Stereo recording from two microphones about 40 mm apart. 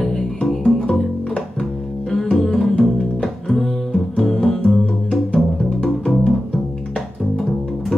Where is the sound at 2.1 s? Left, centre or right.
Centre.